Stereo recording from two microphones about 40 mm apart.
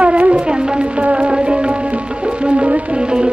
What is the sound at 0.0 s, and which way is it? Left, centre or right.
Shofar, right.